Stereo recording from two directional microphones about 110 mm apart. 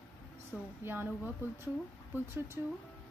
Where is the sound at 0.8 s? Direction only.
20° right (ahead or behind).